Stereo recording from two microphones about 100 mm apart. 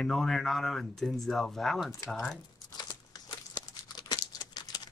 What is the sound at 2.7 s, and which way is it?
Crumpling, 45° left (ahead or behind).